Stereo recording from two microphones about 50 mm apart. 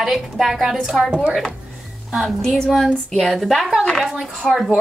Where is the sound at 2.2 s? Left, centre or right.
Centre.